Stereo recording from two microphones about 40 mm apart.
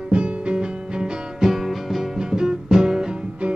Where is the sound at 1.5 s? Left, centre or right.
Centre.